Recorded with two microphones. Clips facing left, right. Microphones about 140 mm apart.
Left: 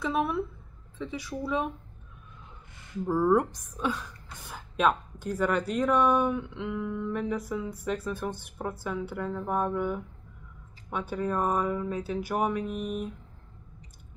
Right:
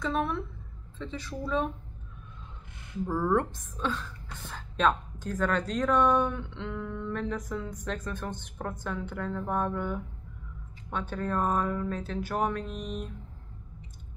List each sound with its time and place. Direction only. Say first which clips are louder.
0.0 s a woman's voice: left 2 dB; 5° left (ahead or behind)
3.1 s a woman's voice: left 4 dB; 10° left (ahead or behind)